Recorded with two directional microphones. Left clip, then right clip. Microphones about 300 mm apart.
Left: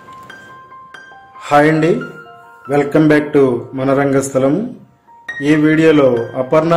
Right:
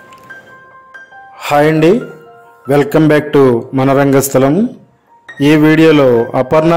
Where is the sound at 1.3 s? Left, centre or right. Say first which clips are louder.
Right 1 dB; right.